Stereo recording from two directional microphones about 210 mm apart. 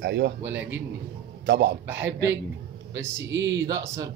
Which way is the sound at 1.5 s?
55° right (ahead or behind).